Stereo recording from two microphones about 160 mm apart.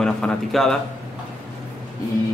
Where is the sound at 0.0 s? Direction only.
5° left (ahead or behind).